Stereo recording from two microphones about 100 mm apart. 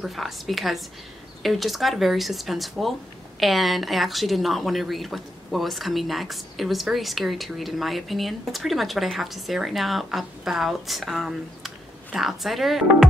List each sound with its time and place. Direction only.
0.0 s speech: centre (ahead or behind)